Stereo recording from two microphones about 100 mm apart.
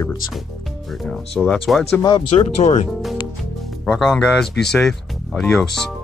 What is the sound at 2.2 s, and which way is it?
Speech, 85° left.